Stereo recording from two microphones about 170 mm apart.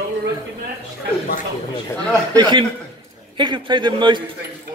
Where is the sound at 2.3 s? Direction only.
25° right (ahead or behind).